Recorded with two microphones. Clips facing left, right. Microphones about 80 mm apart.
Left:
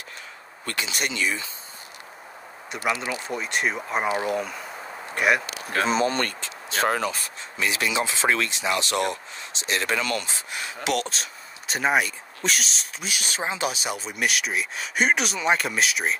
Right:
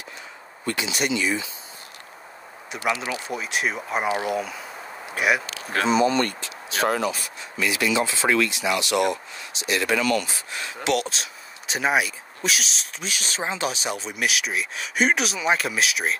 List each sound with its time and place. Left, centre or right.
0.7 s speech: left
2.7 s speech: centre
5.9 s speech: left
10.9 s speech: centre